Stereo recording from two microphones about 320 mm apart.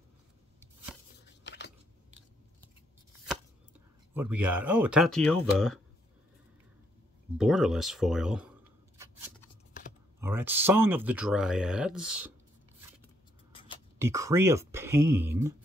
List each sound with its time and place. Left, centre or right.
1.2 s dishes: left
4.1 s speech: centre
7.3 s speech: centre
8.9 s scissors: centre
10.2 s speech: centre
13.9 s speech: centre